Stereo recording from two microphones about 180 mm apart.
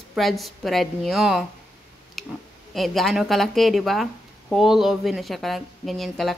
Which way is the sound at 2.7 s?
Centre (ahead or behind).